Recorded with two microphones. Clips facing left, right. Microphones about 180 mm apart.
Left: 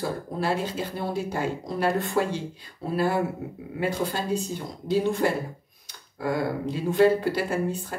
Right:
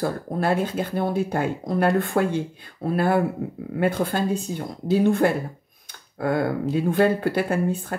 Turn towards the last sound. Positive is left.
turn(degrees=-55)  # may be behind; listen again after turning